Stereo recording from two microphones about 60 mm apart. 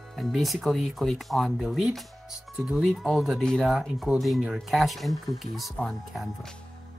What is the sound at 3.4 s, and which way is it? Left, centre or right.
Speech, centre.